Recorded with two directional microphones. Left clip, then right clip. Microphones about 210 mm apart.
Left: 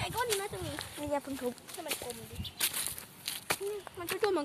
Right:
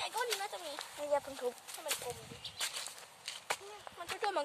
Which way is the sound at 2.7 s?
45° left (ahead or behind).